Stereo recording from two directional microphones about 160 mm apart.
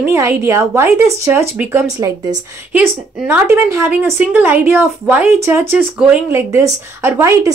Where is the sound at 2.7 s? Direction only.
10° right (ahead or behind).